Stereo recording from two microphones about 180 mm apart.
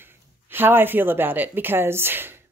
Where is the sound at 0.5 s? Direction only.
10° right (ahead or behind).